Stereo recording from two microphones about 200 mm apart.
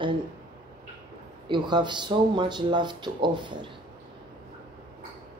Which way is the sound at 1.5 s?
20° right (ahead or behind).